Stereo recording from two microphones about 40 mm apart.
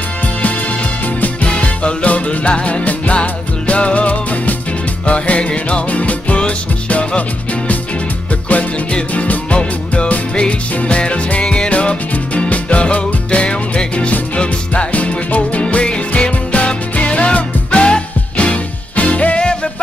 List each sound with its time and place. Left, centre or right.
1.2 s music: left
9.1 s music: left